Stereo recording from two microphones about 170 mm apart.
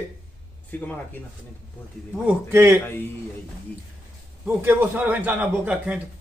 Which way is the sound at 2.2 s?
15° right (ahead or behind).